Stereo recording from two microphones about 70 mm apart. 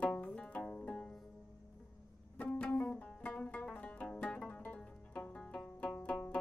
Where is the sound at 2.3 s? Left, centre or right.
Left.